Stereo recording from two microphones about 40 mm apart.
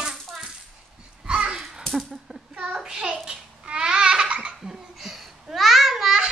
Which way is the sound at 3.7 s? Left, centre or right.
Right.